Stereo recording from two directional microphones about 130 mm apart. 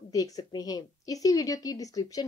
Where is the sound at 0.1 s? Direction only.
30° left (ahead or behind).